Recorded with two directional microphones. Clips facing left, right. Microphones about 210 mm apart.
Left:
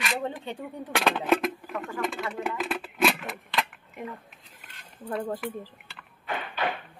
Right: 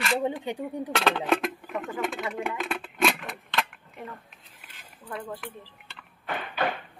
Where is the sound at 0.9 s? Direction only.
5° left (ahead or behind).